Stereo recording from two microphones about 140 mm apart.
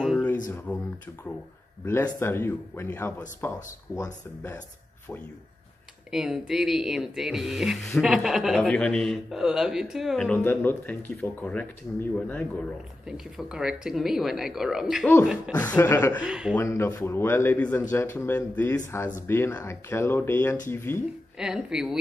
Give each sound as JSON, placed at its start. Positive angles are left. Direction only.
{"t": 2.1, "sound": "speech", "side_deg": 15}
{"t": 6.1, "sound": "speech", "side_deg": -5}
{"t": 13.0, "sound": "speech", "side_deg": -5}
{"t": 15.5, "sound": "speech", "side_deg": 10}
{"t": 16.3, "sound": "speech", "side_deg": -5}
{"t": 16.5, "sound": "speech", "side_deg": 15}
{"t": 21.4, "sound": "speech", "side_deg": -5}